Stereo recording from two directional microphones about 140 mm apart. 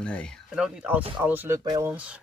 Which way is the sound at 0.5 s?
5° right (ahead or behind).